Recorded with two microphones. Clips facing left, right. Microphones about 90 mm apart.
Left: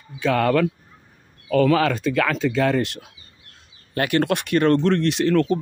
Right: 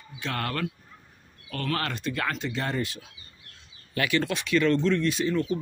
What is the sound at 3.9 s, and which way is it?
Speech, 55° left (ahead or behind).